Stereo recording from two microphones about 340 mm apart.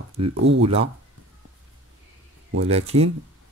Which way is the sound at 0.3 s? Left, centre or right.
Right.